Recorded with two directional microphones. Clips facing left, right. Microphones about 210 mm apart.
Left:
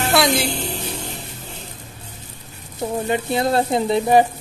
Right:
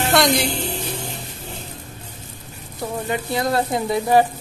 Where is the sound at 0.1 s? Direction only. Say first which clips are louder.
Even; centre (ahead or behind).